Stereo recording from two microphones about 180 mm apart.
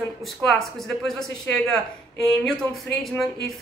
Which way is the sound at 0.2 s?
Centre (ahead or behind).